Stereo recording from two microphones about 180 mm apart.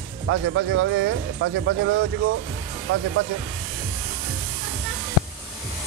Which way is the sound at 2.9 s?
90° right.